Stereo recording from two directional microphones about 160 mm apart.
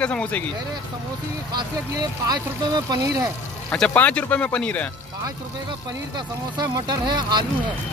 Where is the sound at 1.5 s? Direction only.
25° right (ahead or behind).